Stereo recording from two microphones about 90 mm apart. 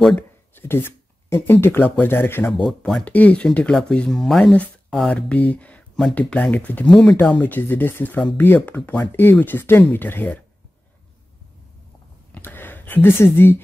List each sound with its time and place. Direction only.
0.6 s speech: 25° left (ahead or behind)
2.5 s speech: centre (ahead or behind)
3.1 s speech: 15° left (ahead or behind)
6.9 s speech: 5° left (ahead or behind)
7.3 s speech: 20° left (ahead or behind)
12.4 s a sound: 25° left (ahead or behind)